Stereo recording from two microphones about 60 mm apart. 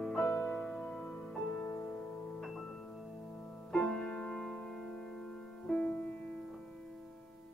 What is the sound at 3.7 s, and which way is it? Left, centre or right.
Music, centre.